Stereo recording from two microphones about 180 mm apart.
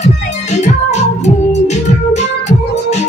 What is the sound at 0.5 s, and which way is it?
Music, 40° left (ahead or behind).